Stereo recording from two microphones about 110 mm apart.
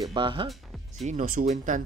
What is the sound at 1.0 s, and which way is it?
Speech, 90° right.